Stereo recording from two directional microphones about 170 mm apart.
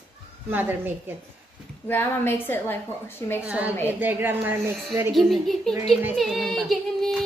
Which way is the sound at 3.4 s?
10° right (ahead or behind).